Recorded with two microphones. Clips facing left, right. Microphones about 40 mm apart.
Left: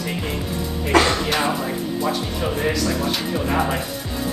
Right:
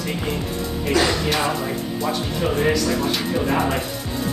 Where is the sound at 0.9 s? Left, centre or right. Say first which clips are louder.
Left 3 dB; left.